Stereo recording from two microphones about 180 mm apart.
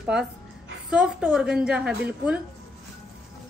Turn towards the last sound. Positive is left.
turn(degrees=-5)  # may be behind; listen again after turning